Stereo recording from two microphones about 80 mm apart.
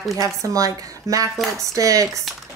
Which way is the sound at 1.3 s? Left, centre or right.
Centre.